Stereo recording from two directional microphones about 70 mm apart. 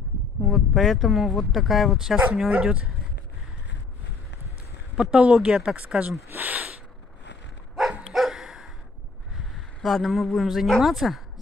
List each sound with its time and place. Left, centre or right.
0.5 s speech: centre
2.5 s speech: centre
4.9 s speech: centre
6.3 s a sound: right
8.1 s bow-wow: centre
9.8 s speech: centre